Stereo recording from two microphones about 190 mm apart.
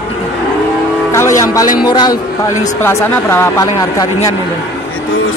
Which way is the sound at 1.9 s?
20° left (ahead or behind).